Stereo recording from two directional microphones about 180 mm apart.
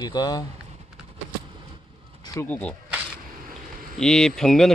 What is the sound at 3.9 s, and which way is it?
Speech, 5° left (ahead or behind).